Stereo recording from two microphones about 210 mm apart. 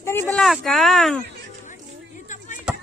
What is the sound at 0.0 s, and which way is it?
Speech, 10° left (ahead or behind).